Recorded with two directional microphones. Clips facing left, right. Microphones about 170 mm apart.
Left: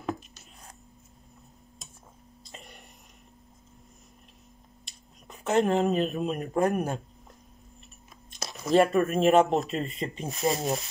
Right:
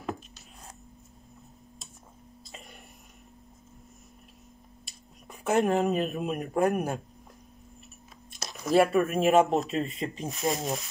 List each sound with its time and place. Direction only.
2.4 s throat clearing: centre (ahead or behind)
4.8 s speech: 5° right (ahead or behind)
8.6 s speech: 5° right (ahead or behind)
10.5 s speech: 35° left (ahead or behind)